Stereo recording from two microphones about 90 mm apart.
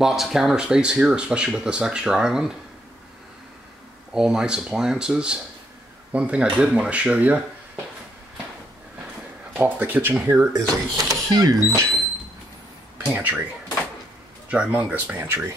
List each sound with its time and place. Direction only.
0.0 s speech: 5° right (ahead or behind)
4.1 s speech: 5° right (ahead or behind)
9.6 s speech: 20° right (ahead or behind)
10.5 s speech: 45° right (ahead or behind)
12.9 s speech: 20° right (ahead or behind)
14.5 s speech: 10° right (ahead or behind)